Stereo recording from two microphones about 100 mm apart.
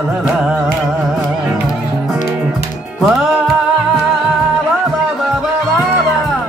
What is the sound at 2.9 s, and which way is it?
Music, centre (ahead or behind).